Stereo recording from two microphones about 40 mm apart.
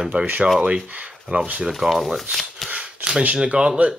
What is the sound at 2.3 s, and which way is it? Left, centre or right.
Shuffling cards, centre.